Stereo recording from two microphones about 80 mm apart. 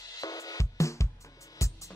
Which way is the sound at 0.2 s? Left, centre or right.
Left.